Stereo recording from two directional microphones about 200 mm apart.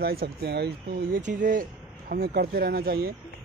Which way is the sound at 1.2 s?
40° right (ahead or behind).